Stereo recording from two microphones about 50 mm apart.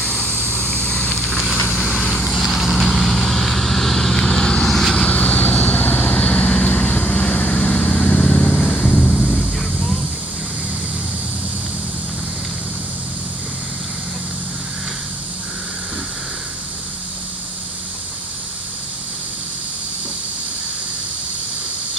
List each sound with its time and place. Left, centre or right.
0.0 s vehicle: centre
5.0 s vehicle: left
6.1 s vehicle: centre